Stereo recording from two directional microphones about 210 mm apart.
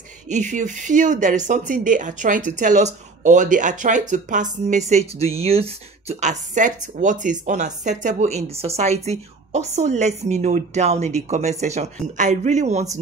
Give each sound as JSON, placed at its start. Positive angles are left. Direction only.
{"t": 0.3, "sound": "speech", "side_deg": -35}